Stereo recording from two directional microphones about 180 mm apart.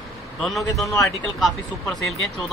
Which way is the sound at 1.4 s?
Centre (ahead or behind).